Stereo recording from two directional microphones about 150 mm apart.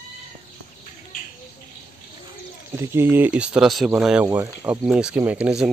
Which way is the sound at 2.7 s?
15° right (ahead or behind).